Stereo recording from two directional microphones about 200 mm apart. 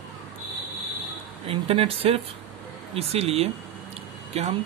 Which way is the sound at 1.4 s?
30° right (ahead or behind).